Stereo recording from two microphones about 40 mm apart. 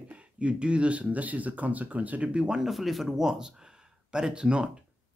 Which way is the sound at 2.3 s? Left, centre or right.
Right.